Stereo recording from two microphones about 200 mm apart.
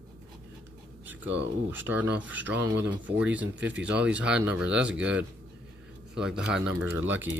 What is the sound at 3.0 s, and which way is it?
Speech, 5° right (ahead or behind).